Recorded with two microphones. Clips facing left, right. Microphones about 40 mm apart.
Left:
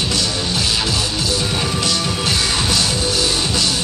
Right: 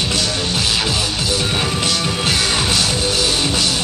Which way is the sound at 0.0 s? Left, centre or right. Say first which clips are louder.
Right 1 dB; centre.